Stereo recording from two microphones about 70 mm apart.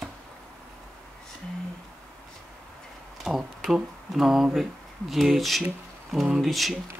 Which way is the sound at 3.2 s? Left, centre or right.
Centre.